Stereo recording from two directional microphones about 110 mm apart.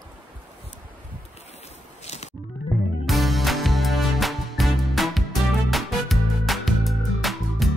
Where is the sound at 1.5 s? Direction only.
75° left (ahead or behind).